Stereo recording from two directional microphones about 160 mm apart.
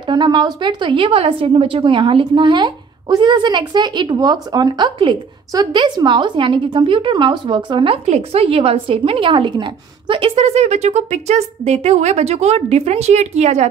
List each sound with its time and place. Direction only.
0.1 s speech: 30° right (ahead or behind); by 13.7 s 45° right (ahead or behind)